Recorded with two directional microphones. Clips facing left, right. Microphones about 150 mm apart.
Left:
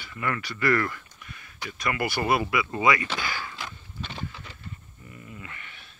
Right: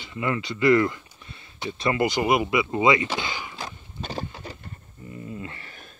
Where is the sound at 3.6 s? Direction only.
40° right (ahead or behind).